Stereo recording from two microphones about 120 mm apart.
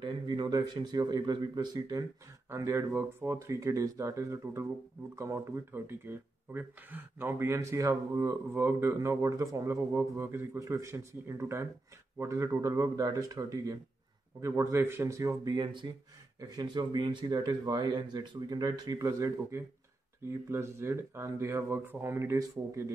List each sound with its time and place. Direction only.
0.0 s speech: 40° right (ahead or behind)